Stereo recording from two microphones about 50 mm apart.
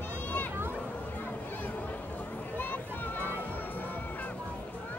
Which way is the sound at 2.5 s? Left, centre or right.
Left.